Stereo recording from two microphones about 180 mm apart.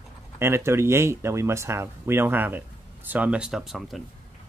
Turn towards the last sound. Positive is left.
turn(degrees=0)  # may be behind; listen again after turning